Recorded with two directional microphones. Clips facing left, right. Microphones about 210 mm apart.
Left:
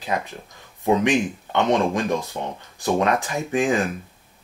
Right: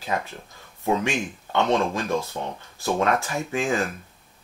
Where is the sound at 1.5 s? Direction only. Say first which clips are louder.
Left 1 dB; 15° left (ahead or behind).